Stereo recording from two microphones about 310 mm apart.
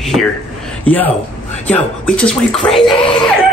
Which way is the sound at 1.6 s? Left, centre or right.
Centre.